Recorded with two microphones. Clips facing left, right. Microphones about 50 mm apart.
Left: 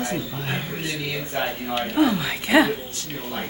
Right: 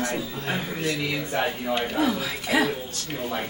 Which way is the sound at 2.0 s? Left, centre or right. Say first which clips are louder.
Left 4 dB; left.